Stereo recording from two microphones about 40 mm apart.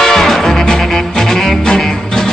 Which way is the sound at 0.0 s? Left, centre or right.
Centre.